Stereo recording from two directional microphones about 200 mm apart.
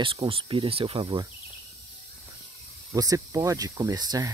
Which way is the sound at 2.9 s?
20° right (ahead or behind).